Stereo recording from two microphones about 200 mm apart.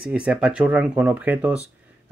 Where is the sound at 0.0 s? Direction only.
5° right (ahead or behind).